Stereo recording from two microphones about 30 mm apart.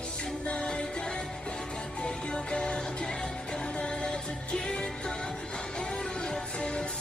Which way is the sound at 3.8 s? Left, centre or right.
Left.